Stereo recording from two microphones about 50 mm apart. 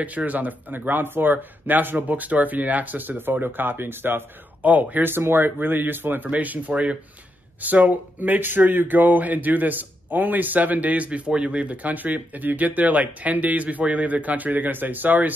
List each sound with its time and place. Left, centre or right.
0.0 s speech: right
4.6 s speech: right
5.0 s speech: right